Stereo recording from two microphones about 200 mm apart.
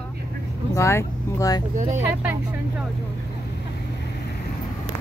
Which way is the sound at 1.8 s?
35° right (ahead or behind).